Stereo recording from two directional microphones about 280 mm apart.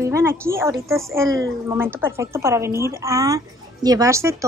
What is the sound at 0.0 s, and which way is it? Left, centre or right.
A woman's voice, centre.